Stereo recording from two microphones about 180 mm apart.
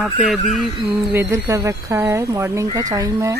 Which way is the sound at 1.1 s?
15° right (ahead or behind).